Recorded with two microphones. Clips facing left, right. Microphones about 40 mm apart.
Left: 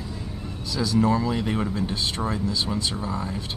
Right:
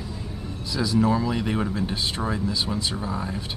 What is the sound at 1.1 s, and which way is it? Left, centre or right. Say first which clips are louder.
Speech: even; centre.